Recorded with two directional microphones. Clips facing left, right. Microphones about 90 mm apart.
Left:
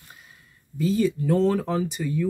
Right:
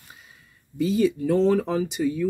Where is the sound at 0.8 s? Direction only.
15° right (ahead or behind).